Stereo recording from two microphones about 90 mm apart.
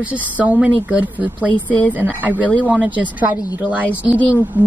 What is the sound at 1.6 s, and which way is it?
Speech, 15° left (ahead or behind).